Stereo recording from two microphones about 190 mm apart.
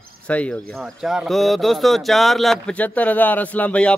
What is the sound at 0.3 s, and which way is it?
Speech, 5° left (ahead or behind).